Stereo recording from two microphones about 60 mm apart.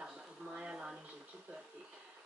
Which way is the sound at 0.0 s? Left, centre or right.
Centre.